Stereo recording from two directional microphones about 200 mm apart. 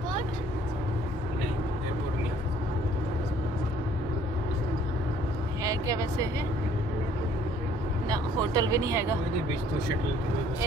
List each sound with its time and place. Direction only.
5.6 s speech: 15° right (ahead or behind)
8.1 s speech: 15° right (ahead or behind)